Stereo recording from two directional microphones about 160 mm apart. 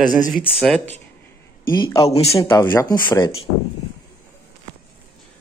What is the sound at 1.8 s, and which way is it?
Speech, 20° left (ahead or behind).